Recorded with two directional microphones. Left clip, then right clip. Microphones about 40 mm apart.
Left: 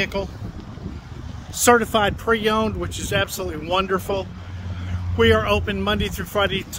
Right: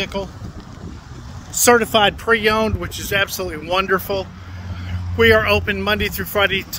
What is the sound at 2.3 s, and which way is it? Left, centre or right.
Speech, left.